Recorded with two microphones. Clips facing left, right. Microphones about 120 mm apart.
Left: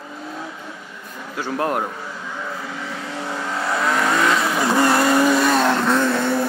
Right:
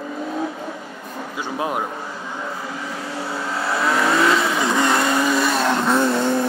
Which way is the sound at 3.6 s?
5° right (ahead or behind).